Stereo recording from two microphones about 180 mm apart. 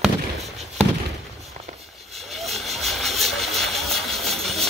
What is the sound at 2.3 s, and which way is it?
Vehicle, centre (ahead or behind).